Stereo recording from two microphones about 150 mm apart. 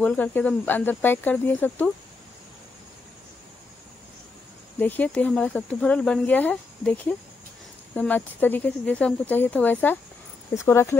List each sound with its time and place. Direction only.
0.0 s speech: 10° left (ahead or behind)
4.7 s speech: 10° left (ahead or behind)